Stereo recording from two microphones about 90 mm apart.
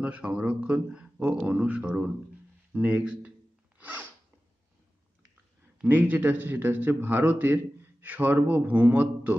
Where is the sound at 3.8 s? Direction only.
20° right (ahead or behind).